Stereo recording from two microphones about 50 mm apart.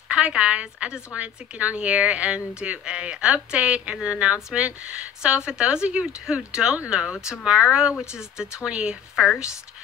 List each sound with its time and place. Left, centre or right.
0.1 s a woman's voice: right
9.1 s speech: centre